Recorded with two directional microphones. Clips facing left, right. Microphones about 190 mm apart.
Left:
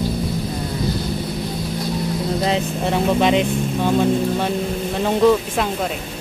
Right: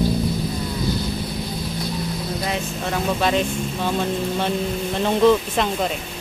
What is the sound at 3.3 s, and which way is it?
Speech, 15° left (ahead or behind).